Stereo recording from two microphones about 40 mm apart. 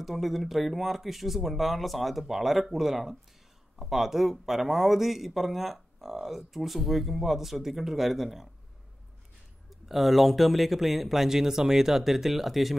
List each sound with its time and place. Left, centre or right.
0.0 s speech: centre
9.7 s speech: centre